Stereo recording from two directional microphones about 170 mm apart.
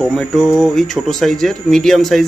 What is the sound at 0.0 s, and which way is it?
Speech, centre (ahead or behind).